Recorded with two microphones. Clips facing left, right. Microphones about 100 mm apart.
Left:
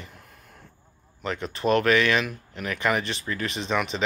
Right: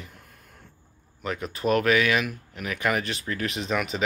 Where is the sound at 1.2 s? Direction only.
5° right (ahead or behind).